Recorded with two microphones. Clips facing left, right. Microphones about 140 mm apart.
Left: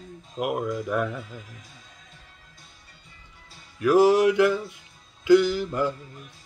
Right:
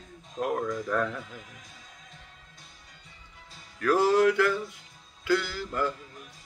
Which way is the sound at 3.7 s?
15° left (ahead or behind).